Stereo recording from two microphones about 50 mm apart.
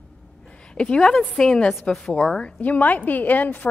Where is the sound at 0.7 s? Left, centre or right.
Left.